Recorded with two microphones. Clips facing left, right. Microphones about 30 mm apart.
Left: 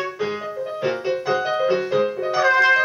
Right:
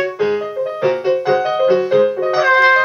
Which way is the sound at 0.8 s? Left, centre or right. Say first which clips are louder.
Right 7 dB; centre.